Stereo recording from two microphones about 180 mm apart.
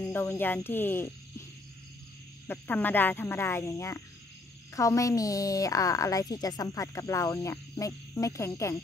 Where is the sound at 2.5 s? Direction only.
10° left (ahead or behind).